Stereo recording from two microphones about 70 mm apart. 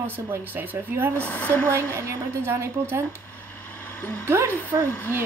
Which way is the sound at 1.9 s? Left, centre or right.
Right.